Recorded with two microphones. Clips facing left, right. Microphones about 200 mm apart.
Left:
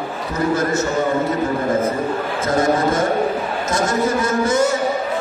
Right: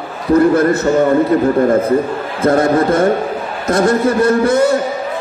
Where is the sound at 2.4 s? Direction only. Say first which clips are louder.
Right 6 dB; 60° right (ahead or behind).